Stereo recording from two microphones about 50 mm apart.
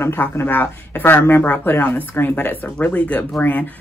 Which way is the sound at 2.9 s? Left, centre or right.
Left.